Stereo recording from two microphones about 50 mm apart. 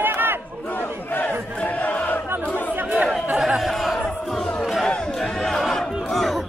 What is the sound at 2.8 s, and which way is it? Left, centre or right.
Chatter, right.